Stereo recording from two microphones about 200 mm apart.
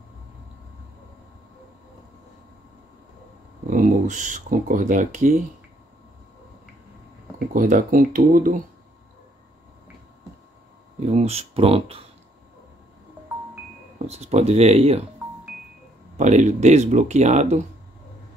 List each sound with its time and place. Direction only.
3.7 s speech: 40° right (ahead or behind)
7.3 s speech: 40° right (ahead or behind)
11.0 s speech: 35° right (ahead or behind)
13.9 s speech: 30° right (ahead or behind)
16.2 s speech: 35° right (ahead or behind)